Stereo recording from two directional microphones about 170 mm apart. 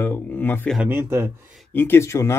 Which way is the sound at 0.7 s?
10° right (ahead or behind).